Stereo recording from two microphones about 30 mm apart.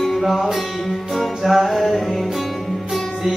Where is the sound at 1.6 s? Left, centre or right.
Centre.